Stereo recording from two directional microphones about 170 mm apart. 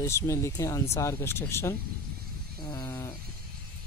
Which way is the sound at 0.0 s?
15° left (ahead or behind).